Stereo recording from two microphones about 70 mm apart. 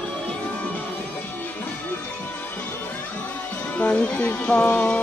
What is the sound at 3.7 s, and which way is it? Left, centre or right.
Speech, centre.